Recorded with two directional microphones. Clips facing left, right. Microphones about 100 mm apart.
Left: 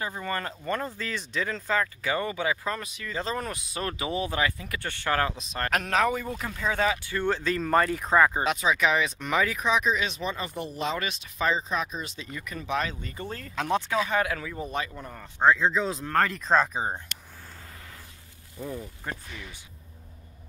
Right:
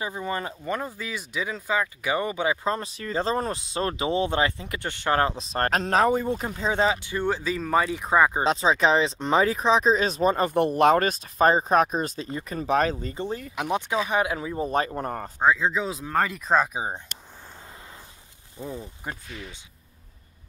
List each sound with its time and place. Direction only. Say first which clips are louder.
0.0 s speech: right 2 dB; 15° right (ahead or behind)
8.5 s speech: right 4 dB; 30° right (ahead or behind)
13.2 s speech: right 1 dB; 15° right (ahead or behind)
14.7 s speech: right 7 dB; 40° right (ahead or behind)
15.3 s speech: left 1 dB; 5° right (ahead or behind)
18.6 s speech: right 1 dB; 20° right (ahead or behind)